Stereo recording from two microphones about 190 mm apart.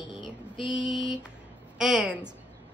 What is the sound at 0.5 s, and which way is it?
Mantra, 25° left (ahead or behind).